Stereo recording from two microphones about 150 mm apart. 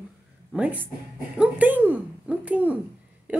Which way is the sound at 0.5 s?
10° right (ahead or behind).